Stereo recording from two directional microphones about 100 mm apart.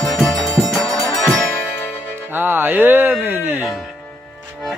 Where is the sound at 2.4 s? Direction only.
20° right (ahead or behind).